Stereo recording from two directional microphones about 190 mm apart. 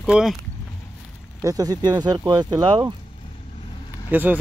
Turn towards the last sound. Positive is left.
turn(degrees=-5)  # may be behind; listen again after turning